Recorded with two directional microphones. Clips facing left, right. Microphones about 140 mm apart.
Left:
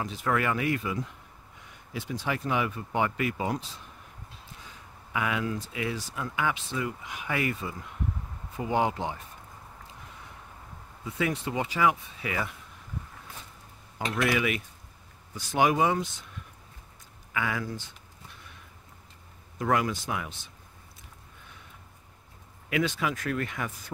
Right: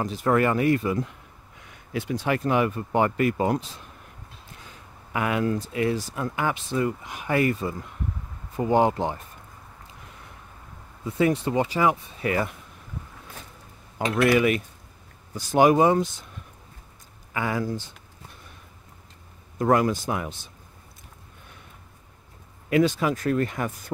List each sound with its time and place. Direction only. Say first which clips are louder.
0.0 s speech: right 6 dB; 40° right (ahead or behind)
1.9 s speech: right 6 dB; 65° right (ahead or behind)
5.1 s speech: right 5 dB; 50° right (ahead or behind)
11.1 s speech: right 7 dB; 40° right (ahead or behind)
14.0 s speech: right 7 dB; 55° right (ahead or behind)
17.3 s speech: right 5 dB; 35° right (ahead or behind)
19.6 s speech: right 6 dB; 40° right (ahead or behind)
22.7 s speech: right 7 dB; 40° right (ahead or behind)